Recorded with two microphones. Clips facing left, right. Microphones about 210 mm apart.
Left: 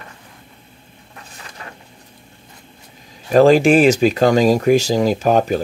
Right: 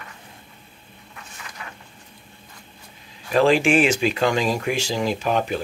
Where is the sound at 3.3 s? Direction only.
40° left (ahead or behind).